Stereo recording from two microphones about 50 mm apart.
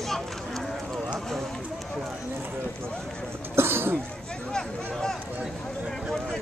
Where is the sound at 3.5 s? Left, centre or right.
Right.